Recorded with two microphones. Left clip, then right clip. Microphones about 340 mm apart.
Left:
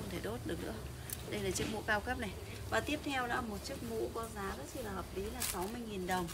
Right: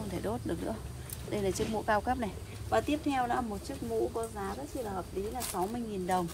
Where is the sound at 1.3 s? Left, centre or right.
Centre.